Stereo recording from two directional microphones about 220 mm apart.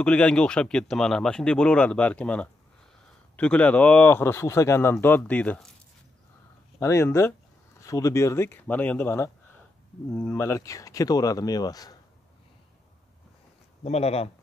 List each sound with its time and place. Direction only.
0.0 s speech: 5° left (ahead or behind)
6.8 s speech: 10° left (ahead or behind)
13.8 s speech: 30° left (ahead or behind)